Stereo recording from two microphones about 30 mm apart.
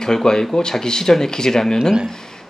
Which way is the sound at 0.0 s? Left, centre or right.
Left.